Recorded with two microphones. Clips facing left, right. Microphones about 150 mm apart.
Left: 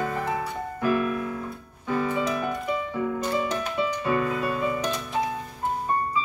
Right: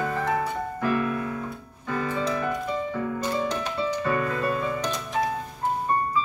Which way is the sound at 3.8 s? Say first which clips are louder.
Left 1 dB; 10° left (ahead or behind).